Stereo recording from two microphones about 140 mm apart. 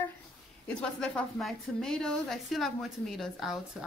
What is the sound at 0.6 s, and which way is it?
A woman's voice, 5° left (ahead or behind).